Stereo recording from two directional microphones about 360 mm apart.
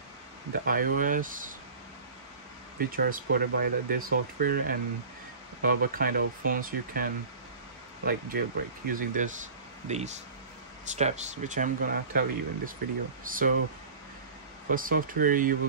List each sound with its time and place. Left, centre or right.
0.5 s speech: right
3.0 s speech: right
14.7 s speech: right